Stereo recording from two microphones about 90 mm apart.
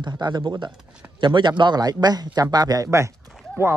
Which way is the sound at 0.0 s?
55° right (ahead or behind).